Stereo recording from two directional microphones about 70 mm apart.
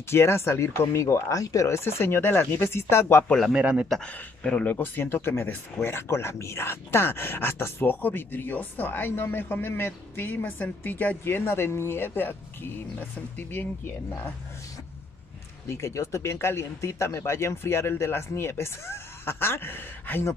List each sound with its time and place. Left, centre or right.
0.1 s speech: left
3.5 s speech: centre
4.0 s speech: centre
4.7 s speech: left
15.7 s speech: left